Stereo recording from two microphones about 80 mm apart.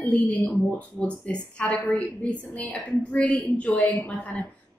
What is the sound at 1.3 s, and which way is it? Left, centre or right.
Speech, centre.